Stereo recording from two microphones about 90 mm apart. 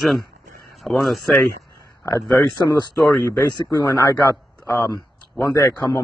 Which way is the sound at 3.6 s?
50° left (ahead or behind).